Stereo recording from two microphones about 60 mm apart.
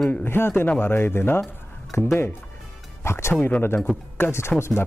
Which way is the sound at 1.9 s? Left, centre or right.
Left.